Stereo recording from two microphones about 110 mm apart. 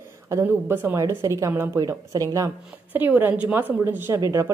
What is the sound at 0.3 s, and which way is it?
A woman's voice, 25° right (ahead or behind).